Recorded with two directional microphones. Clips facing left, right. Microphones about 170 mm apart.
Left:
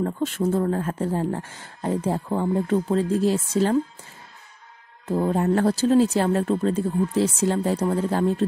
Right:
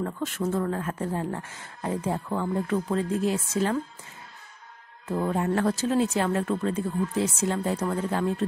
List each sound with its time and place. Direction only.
0.0 s speech: 30° left (ahead or behind)
5.1 s speech: 35° left (ahead or behind)